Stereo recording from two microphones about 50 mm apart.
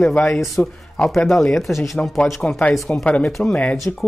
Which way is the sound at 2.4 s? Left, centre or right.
Left.